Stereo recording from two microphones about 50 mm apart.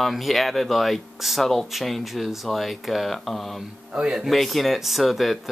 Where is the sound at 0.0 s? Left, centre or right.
Centre.